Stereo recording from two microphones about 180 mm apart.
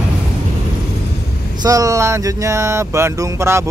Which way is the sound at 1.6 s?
20° right (ahead or behind).